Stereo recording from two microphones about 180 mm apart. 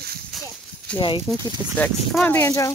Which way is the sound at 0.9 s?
25° left (ahead or behind).